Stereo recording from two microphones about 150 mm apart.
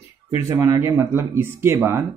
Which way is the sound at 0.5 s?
20° right (ahead or behind).